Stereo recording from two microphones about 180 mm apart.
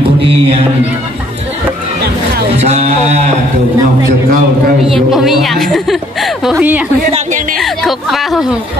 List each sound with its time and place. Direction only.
0.0 s music: 30° right (ahead or behind)
2.6 s a sound: 35° right (ahead or behind)
5.1 s a woman's voice: centre (ahead or behind)